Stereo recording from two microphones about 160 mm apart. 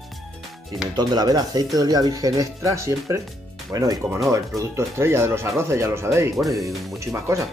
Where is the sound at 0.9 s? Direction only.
25° right (ahead or behind).